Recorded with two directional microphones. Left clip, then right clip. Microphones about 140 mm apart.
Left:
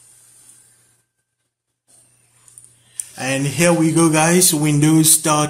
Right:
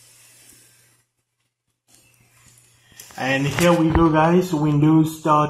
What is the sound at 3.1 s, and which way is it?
Speech, 20° left (ahead or behind).